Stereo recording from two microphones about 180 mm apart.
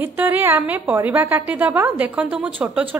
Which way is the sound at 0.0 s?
10° right (ahead or behind).